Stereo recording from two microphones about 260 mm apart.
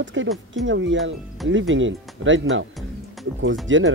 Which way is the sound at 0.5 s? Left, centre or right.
Right.